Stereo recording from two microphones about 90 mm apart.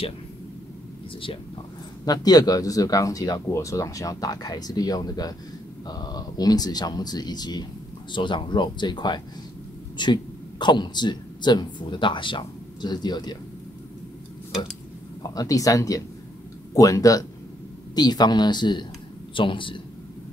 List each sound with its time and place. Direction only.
2.0 s speech: 45° left (ahead or behind)
8.1 s speech: 60° left (ahead or behind)
15.2 s speech: 40° left (ahead or behind)
19.3 s a man's voice: 70° left (ahead or behind)